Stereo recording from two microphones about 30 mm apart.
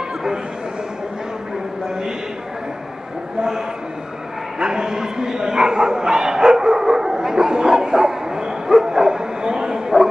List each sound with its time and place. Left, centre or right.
4.6 s bow-wow: right